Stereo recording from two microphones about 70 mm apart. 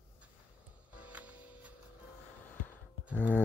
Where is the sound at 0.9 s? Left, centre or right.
Centre.